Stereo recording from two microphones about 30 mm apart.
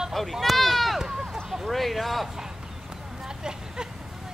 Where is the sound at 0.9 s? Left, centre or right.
Centre.